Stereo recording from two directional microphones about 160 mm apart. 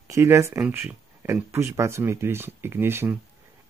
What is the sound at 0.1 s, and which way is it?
Speech, 15° right (ahead or behind).